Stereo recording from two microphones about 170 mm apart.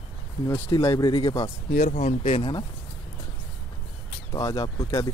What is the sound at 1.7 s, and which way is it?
Speech, 45° left (ahead or behind).